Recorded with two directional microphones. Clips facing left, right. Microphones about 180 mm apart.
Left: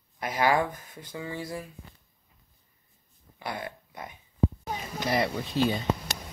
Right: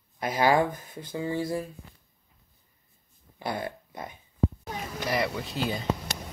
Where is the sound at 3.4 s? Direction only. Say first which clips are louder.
Right 4 dB; 30° right (ahead or behind).